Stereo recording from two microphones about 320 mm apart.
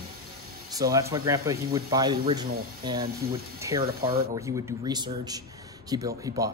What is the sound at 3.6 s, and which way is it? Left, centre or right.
A woman's voice, centre.